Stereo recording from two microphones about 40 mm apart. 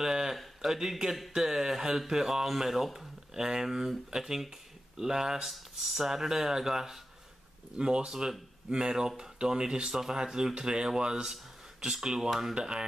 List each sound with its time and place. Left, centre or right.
0.0 s speech: centre
7.7 s speech: right